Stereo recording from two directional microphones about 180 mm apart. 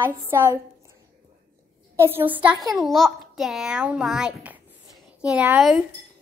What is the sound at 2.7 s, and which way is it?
A child's voice, centre (ahead or behind).